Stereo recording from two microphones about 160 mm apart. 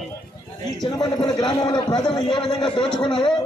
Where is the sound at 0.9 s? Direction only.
30° left (ahead or behind).